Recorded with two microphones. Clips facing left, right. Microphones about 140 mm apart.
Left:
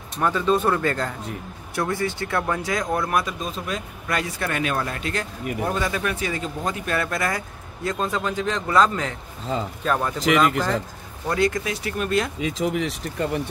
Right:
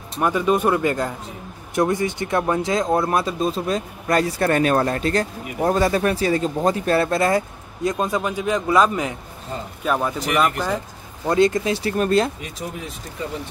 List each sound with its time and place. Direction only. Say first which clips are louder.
0.2 s speech: right 2 dB; 15° right (ahead or behind)
7.9 s speech: right 1 dB; 15° right (ahead or behind)
11.2 s speech: right 5 dB; 25° right (ahead or behind)
12.4 s speech: left 8 dB; 90° left; by 13.4 s 70° left (ahead or behind)